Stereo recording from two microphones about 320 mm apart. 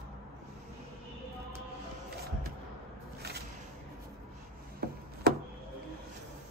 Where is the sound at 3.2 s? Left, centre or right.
Right.